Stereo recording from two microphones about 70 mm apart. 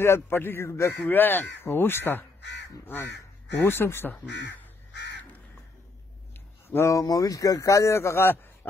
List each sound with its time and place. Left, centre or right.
0.0 s speech: left
1.0 s speech: left
3.6 s speech: left
6.3 s a sound: left
6.9 s speech: left